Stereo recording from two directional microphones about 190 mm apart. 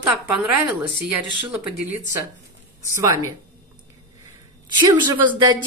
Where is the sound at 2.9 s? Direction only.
15° right (ahead or behind).